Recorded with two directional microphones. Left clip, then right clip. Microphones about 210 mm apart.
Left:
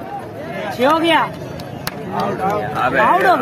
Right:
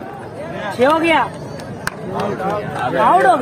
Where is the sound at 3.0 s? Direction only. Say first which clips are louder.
Right 2 dB; 30° right (ahead or behind).